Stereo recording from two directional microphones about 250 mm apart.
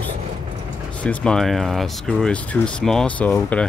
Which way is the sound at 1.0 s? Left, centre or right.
Centre.